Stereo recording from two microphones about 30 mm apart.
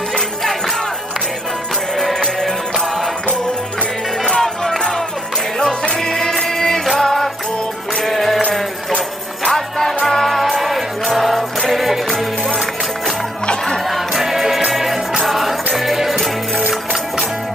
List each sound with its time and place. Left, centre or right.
2.0 s music: centre
4.3 s music: centre
7.0 s jingle bell: centre
8.0 s music: centre
9.5 s music: centre
10.0 s music: centre
13.8 s music: centre